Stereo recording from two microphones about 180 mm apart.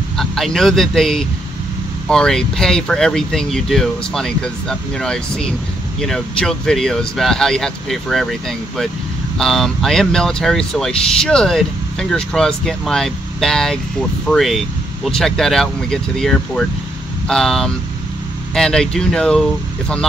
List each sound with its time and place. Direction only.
0.2 s speech: centre (ahead or behind)